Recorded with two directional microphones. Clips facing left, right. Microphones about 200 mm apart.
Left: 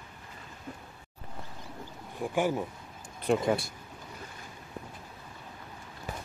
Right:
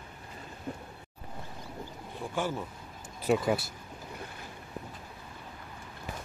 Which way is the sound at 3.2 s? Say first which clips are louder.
Even; 5° right (ahead or behind).